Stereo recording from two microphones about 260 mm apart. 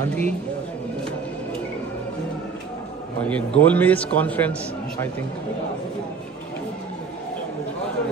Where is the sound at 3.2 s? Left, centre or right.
Centre.